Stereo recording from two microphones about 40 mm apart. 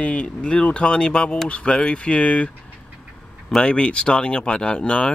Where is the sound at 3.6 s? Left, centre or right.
Left.